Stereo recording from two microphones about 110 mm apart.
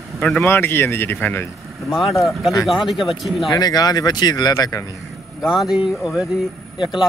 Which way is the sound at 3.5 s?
35° left (ahead or behind).